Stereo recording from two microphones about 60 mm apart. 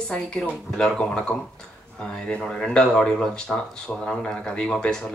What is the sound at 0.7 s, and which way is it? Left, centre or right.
Speech, centre.